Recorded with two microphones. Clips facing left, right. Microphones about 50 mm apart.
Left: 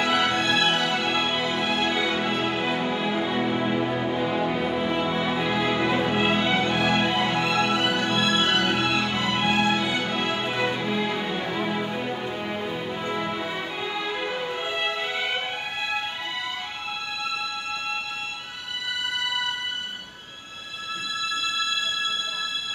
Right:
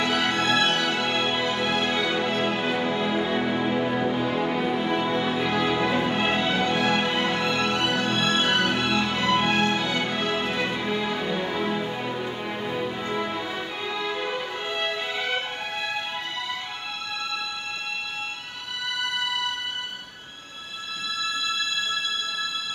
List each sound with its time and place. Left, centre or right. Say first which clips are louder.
0.0 s music: left 1 dB; centre
7.8 s music: left 1 dB; left
8.3 s music: right 1 dB; centre